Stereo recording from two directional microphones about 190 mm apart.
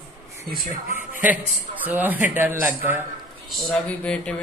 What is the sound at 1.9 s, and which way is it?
Speech, 10° right (ahead or behind).